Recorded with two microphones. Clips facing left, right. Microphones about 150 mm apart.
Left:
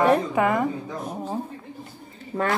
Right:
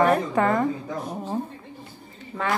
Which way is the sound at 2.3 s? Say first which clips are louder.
Left 3 dB; 35° left (ahead or behind).